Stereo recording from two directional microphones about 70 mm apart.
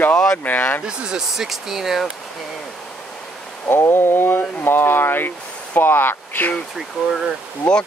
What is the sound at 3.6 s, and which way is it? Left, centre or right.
Speech, left.